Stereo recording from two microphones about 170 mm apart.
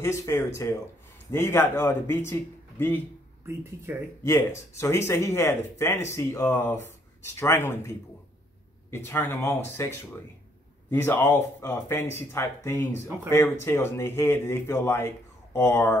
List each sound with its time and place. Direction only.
0.0 s speech: 15° left (ahead or behind)
3.4 s speech: 15° right (ahead or behind)
4.3 s speech: 15° left (ahead or behind)
8.9 s speech: 15° left (ahead or behind)